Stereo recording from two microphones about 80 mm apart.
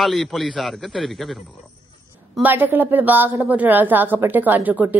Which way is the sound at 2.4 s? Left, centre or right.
Right.